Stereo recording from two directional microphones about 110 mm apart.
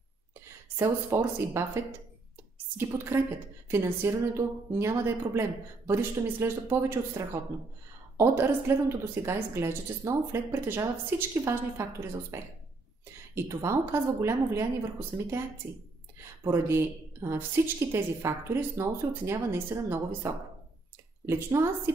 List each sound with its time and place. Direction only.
0.7 s a woman's voice: 25° right (ahead or behind)
3.1 s a woman's voice: 25° right (ahead or behind)